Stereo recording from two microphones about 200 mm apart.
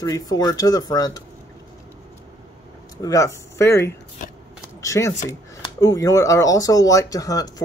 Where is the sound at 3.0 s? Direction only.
15° left (ahead or behind).